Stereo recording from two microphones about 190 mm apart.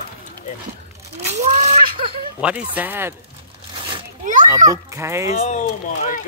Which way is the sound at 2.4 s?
5° right (ahead or behind).